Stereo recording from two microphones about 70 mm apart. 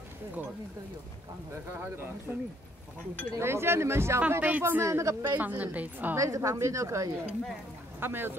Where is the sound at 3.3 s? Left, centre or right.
Right.